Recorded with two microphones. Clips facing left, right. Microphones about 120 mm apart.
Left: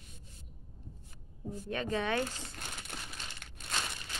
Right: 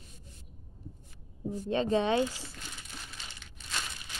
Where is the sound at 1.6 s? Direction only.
25° right (ahead or behind).